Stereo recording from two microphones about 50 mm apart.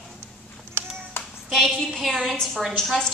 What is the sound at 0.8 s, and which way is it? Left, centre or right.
Cat, right.